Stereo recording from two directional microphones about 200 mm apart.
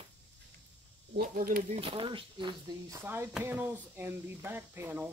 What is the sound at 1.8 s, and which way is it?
Speech, 25° right (ahead or behind).